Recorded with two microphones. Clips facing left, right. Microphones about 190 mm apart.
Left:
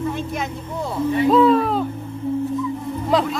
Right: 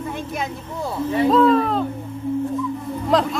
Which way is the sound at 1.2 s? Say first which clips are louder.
Even; 5° left (ahead or behind).